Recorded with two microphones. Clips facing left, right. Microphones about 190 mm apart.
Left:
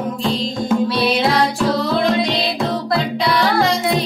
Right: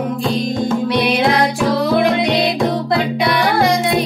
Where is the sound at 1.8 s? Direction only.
15° right (ahead or behind).